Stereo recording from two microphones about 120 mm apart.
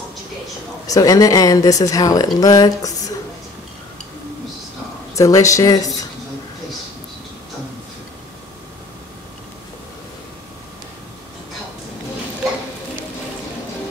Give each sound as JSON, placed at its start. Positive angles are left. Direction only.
{"t": 0.8, "sound": "a woman's voice", "side_deg": 30}
{"t": 5.1, "sound": "speech", "side_deg": 25}